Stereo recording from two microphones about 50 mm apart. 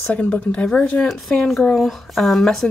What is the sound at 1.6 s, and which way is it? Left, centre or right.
Speech, centre.